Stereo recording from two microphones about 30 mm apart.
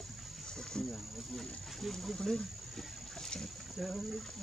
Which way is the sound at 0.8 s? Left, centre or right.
Left.